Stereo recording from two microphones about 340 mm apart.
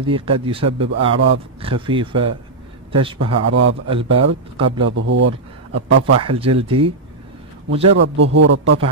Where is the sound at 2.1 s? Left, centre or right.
Right.